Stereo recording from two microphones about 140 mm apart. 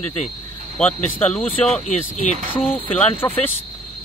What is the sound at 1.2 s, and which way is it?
Speech, 10° left (ahead or behind).